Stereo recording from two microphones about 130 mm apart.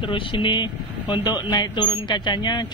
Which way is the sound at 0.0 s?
40° left (ahead or behind).